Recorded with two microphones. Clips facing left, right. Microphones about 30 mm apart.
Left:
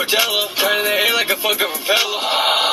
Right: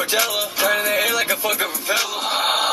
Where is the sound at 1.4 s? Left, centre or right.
Left.